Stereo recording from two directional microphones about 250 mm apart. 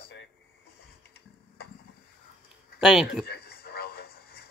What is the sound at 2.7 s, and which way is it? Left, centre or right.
Speech, centre.